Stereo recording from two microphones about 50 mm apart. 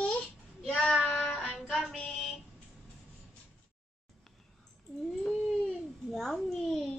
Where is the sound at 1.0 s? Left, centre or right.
Left.